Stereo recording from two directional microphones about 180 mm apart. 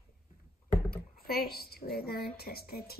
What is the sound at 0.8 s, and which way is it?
A woman's voice, 55° left (ahead or behind).